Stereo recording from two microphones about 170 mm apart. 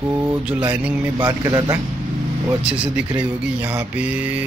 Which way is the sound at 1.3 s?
20° right (ahead or behind).